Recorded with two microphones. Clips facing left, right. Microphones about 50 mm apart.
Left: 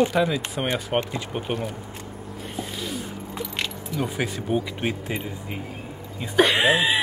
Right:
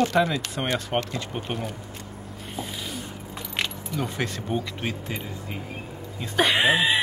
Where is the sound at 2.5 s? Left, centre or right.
Centre.